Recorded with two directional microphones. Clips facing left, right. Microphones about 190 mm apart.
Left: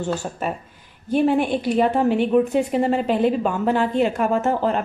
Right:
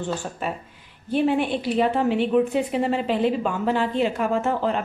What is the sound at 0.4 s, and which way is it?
A woman's voice, 45° left (ahead or behind).